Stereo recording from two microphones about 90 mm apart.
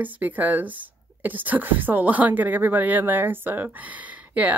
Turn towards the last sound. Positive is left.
turn(degrees=-15)  # may be behind; listen again after turning